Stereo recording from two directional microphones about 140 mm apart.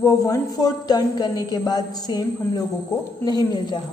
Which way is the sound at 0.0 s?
25° left (ahead or behind).